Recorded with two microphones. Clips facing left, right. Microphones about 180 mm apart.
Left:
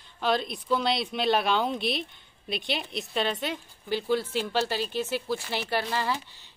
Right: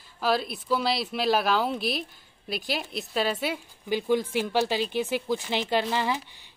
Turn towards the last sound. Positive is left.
turn(degrees=-15)  # may be behind; listen again after turning